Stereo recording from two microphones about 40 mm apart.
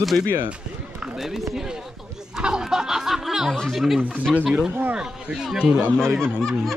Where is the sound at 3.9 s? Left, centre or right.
Right.